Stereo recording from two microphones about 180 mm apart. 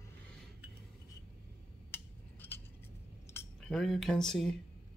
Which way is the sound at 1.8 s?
10° left (ahead or behind).